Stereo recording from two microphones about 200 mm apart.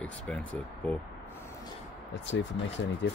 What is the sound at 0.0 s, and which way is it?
Speech, 5° left (ahead or behind).